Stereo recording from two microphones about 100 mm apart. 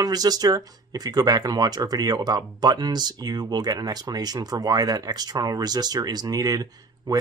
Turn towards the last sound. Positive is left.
turn(degrees=-35)  # may be behind; listen again after turning